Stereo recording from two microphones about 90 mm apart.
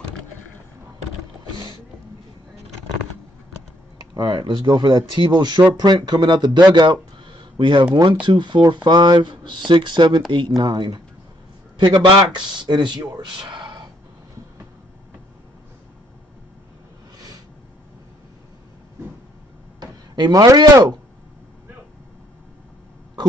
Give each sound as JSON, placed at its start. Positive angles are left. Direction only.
{"t": 4.1, "sound": "speech", "side_deg": -55}
{"t": 19.8, "sound": "speech", "side_deg": -50}